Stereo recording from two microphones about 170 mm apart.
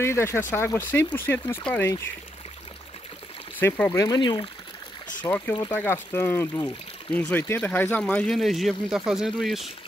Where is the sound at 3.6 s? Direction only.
10° left (ahead or behind).